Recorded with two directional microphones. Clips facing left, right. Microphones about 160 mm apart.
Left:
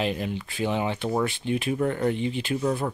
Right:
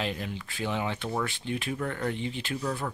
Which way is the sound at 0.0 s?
15° left (ahead or behind).